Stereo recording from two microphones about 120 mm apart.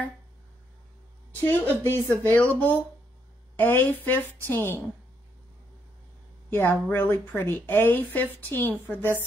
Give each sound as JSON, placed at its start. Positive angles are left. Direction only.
{"t": 1.3, "sound": "a woman's voice", "side_deg": 15}
{"t": 6.5, "sound": "a woman's voice", "side_deg": 20}